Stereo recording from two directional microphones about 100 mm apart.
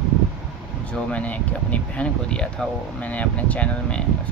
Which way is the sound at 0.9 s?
10° left (ahead or behind).